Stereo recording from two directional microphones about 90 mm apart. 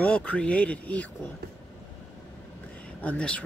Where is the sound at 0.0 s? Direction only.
10° left (ahead or behind).